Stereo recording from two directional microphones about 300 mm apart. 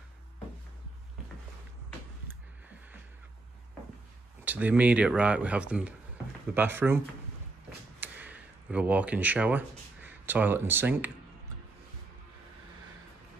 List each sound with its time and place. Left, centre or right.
4.5 s speech: centre
8.0 s speech: centre